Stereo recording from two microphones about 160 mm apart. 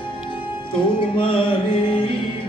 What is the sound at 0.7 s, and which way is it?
Music, 35° left (ahead or behind).